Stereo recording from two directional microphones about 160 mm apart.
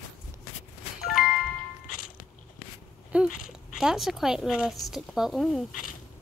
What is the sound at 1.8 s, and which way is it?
Music, 60° left (ahead or behind).